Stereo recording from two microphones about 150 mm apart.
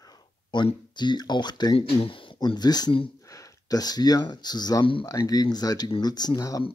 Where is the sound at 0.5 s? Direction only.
30° left (ahead or behind).